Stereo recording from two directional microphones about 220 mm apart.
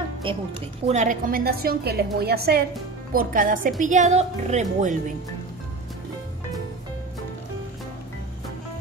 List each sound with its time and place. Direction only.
0.2 s a woman's voice: 25° right (ahead or behind)